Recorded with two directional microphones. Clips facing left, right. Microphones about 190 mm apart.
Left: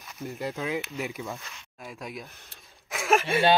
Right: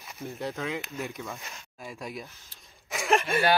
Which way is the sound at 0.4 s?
Centre (ahead or behind).